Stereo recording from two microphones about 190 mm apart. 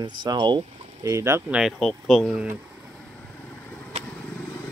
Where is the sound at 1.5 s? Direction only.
Centre (ahead or behind).